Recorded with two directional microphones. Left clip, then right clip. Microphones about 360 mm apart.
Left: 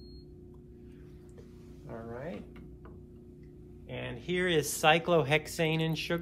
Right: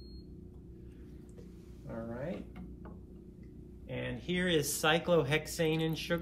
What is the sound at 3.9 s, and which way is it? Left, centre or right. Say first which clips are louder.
Speech: left 2 dB; centre.